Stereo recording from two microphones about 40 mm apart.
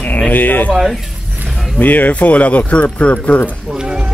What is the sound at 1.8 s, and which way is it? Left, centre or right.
Speech, left.